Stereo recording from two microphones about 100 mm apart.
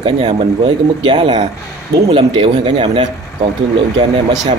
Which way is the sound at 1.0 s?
50° right (ahead or behind).